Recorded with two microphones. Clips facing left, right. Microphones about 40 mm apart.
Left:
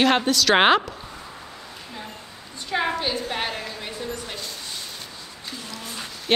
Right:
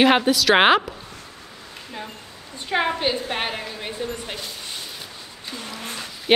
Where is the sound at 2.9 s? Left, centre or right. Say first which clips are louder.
Right 2 dB; centre.